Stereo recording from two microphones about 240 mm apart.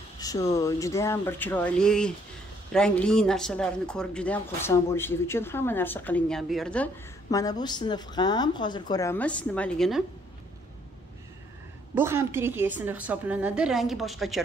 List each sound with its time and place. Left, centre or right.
0.2 s a sound: centre
0.6 s speech: centre
7.2 s speech: centre
11.9 s a woman's voice: centre